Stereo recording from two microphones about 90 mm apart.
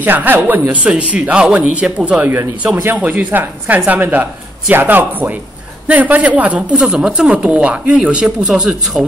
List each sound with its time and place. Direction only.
0.0 s speech: 20° right (ahead or behind)